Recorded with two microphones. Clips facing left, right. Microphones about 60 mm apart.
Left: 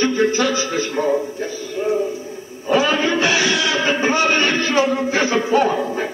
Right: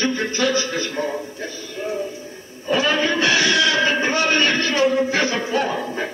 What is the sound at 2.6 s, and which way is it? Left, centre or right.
Music, centre.